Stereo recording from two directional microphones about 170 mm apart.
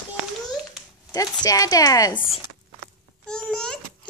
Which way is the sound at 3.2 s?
5° left (ahead or behind).